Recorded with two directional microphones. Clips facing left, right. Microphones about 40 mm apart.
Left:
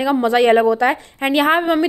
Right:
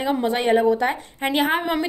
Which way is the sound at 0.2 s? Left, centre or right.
Left.